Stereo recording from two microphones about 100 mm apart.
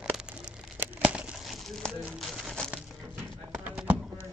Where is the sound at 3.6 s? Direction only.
15° right (ahead or behind).